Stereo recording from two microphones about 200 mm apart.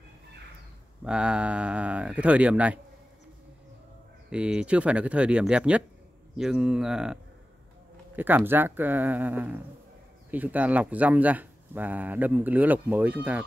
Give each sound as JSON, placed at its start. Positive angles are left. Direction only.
{"t": 1.0, "sound": "speech", "side_deg": -5}
{"t": 4.3, "sound": "speech", "side_deg": -5}
{"t": 8.2, "sound": "speech", "side_deg": -10}